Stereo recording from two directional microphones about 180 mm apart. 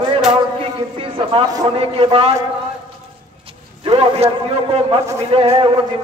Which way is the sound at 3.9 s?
35° right (ahead or behind).